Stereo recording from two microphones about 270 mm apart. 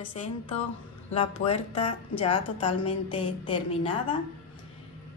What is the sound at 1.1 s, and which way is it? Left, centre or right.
Speech, left.